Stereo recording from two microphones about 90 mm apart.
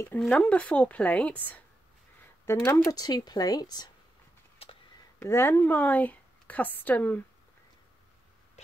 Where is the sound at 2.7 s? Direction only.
45° left (ahead or behind).